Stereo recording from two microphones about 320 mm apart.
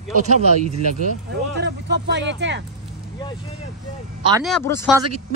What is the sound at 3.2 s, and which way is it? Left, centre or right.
Speech, centre.